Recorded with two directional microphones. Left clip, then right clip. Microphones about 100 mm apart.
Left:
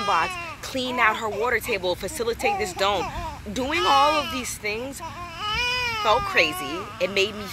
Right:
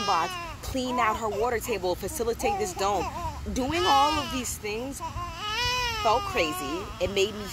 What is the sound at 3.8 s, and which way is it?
Speech, 50° left (ahead or behind).